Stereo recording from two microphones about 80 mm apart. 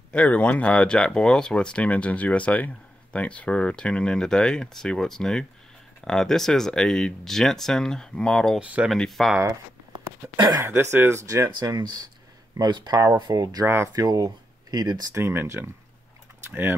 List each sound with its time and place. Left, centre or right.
0.1 s speech: centre
8.5 s speech: centre
8.9 s speech: centre
10.6 s speech: right
15.1 s speech: right